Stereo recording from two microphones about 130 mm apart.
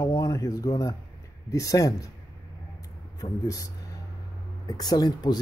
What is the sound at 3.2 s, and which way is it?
Speech, 25° left (ahead or behind).